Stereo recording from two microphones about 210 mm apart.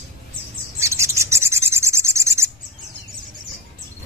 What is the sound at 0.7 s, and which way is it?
Rub, 15° right (ahead or behind).